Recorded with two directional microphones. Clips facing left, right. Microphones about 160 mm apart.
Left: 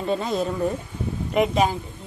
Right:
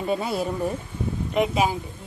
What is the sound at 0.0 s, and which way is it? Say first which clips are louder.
A woman's voice: left 1 dB; 10° right (ahead or behind).